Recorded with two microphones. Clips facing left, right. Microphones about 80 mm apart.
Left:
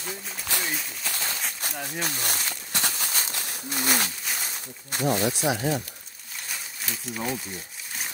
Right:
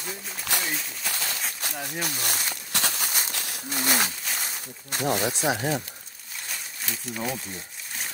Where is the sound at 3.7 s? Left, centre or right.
Centre.